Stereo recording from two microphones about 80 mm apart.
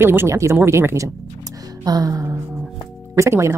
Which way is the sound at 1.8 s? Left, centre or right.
Right.